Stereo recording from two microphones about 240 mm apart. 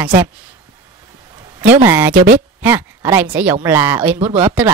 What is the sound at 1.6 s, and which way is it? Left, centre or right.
Speech, centre.